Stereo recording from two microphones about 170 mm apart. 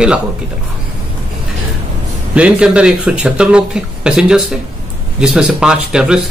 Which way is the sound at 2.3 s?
5° right (ahead or behind).